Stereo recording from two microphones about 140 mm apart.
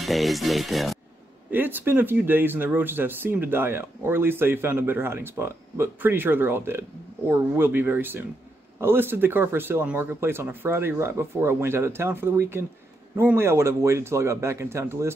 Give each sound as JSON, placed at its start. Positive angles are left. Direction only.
{"t": 0.0, "sound": "music", "side_deg": 0}
{"t": 1.5, "sound": "speech", "side_deg": -15}